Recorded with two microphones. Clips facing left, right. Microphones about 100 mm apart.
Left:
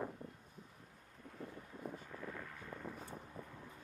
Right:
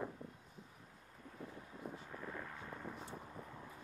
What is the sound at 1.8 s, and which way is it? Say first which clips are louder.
Vehicle: left 1 dB; 45° left (ahead or behind).